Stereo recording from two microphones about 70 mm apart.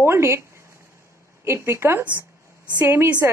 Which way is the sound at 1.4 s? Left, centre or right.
Right.